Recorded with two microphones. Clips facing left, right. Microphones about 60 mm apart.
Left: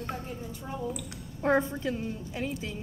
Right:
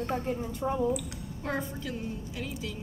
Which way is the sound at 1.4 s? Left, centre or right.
Left.